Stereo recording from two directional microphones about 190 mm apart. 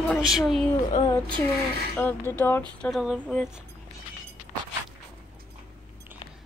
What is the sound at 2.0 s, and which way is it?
Speech, 10° left (ahead or behind).